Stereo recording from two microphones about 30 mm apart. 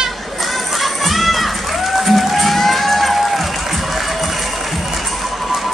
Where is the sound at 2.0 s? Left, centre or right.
Centre.